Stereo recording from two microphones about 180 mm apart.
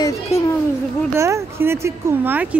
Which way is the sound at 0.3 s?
35° left (ahead or behind).